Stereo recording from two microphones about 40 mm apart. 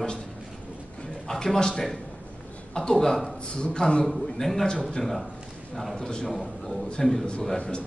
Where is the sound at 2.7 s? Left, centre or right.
Left.